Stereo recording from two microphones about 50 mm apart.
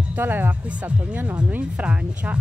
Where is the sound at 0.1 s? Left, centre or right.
Right.